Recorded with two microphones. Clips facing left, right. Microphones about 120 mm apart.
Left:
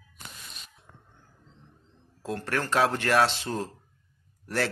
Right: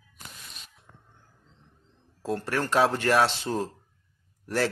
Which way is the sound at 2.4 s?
15° right (ahead or behind).